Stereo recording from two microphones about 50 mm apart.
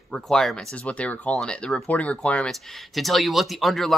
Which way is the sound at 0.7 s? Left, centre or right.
Left.